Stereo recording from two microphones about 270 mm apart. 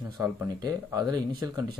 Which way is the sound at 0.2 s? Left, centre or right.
Centre.